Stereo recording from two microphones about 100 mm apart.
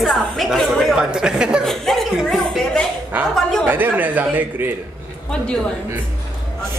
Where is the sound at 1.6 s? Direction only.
5° left (ahead or behind).